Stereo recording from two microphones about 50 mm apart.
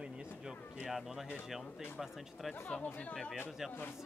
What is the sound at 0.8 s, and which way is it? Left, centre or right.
Speech, centre.